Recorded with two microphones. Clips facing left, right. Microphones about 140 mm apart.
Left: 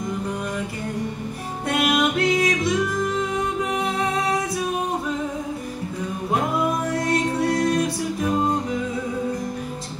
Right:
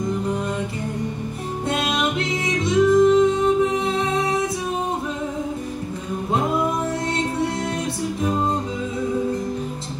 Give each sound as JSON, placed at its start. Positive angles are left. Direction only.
{"t": 1.7, "sound": "music", "side_deg": -25}